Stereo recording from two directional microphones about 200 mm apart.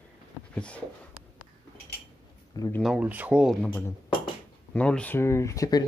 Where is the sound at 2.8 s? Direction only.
5° right (ahead or behind).